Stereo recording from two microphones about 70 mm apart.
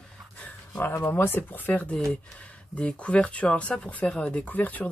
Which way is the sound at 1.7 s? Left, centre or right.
Centre.